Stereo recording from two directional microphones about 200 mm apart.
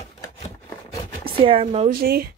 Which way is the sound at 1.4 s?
30° right (ahead or behind).